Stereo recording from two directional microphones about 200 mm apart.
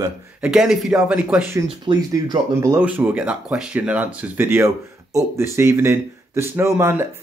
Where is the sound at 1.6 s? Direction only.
20° right (ahead or behind).